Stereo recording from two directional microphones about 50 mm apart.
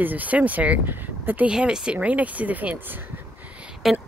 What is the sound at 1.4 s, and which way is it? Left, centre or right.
Speech, centre.